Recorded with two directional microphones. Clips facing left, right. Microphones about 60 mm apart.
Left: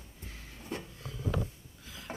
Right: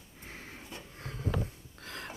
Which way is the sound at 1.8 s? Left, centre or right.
Right.